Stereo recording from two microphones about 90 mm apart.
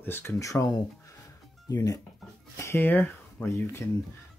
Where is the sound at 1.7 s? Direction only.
40° left (ahead or behind).